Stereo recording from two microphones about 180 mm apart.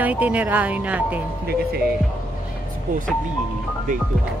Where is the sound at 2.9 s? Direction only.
45° right (ahead or behind).